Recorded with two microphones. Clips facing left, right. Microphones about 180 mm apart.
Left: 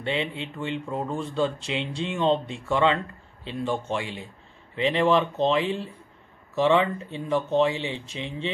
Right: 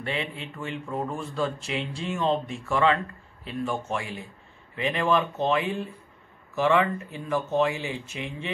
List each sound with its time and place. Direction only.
0.0 s speech: 25° left (ahead or behind)